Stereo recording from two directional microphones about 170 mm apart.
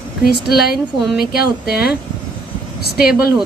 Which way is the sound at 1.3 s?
65° left (ahead or behind).